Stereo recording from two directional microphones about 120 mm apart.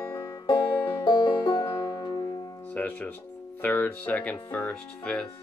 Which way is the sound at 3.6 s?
15° left (ahead or behind).